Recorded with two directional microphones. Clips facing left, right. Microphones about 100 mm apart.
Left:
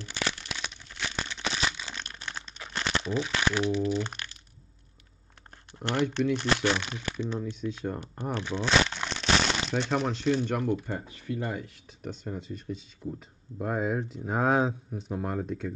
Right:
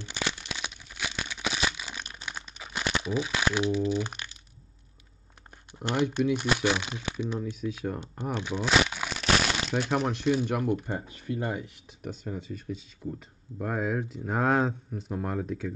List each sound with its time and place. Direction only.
0.0 s crumpling: 20° right (ahead or behind)
5.8 s speech: 10° right (ahead or behind)
11.2 s speech: 25° right (ahead or behind)
11.5 s speech: 10° right (ahead or behind)